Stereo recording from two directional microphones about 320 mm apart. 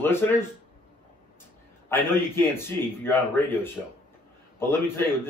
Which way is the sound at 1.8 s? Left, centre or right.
Centre.